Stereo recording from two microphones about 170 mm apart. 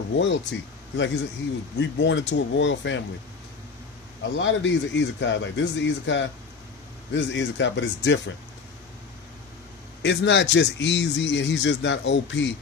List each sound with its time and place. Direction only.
0.1 s speech: 90° left
4.4 s speech: 90° left
10.0 s speech: 90° left